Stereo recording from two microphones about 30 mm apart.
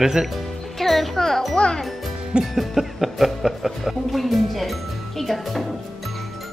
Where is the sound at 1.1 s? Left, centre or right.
Centre.